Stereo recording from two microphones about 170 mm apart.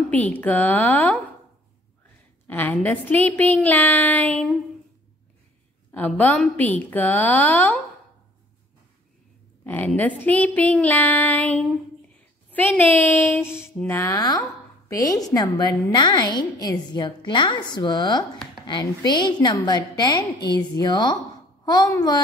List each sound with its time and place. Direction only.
0.1 s a woman's voice: 10° left (ahead or behind)
2.4 s a woman's voice: 10° left (ahead or behind)
5.9 s a woman's voice: 10° left (ahead or behind)
9.7 s a woman's voice: 10° left (ahead or behind)